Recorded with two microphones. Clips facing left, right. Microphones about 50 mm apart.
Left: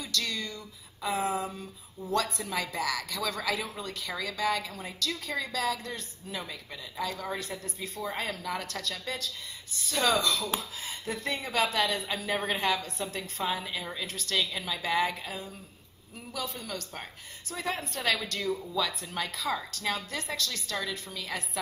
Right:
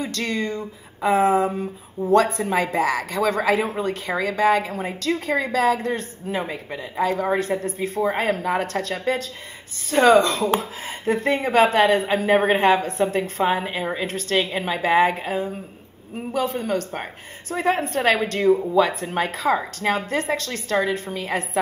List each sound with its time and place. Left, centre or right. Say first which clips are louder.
0.0 s speech: right 9 dB; right